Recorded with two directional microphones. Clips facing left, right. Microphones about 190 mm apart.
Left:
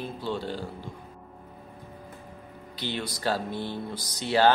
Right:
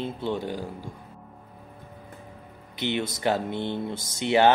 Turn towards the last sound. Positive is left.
turn(degrees=-20)  # may be behind; listen again after turning